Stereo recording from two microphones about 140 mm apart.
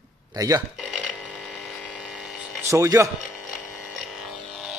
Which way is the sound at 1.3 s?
5° right (ahead or behind).